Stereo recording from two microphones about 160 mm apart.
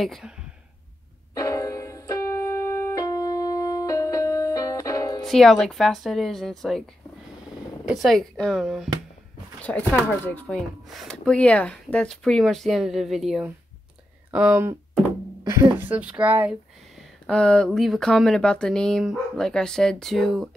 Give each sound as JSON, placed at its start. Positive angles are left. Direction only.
{"t": 0.0, "sound": "speech", "side_deg": 0}
{"t": 1.3, "sound": "keyboard", "side_deg": 20}
{"t": 5.2, "sound": "speech", "side_deg": 0}
{"t": 7.8, "sound": "speech", "side_deg": 0}
{"t": 15.4, "sound": "speech", "side_deg": -20}
{"t": 17.3, "sound": "speech", "side_deg": 5}